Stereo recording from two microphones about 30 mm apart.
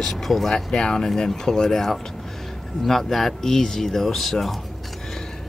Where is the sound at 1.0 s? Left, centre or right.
Centre.